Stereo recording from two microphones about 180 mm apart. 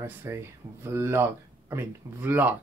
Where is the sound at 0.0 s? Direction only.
10° right (ahead or behind).